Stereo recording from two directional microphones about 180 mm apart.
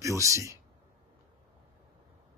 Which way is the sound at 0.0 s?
15° right (ahead or behind).